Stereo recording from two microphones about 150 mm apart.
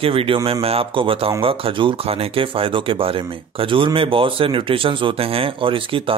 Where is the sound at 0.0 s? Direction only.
40° right (ahead or behind).